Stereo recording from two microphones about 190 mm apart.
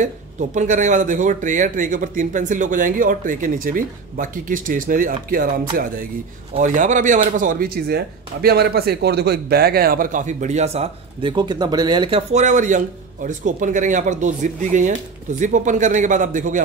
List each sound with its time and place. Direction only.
0.0 s speech: 40° right (ahead or behind)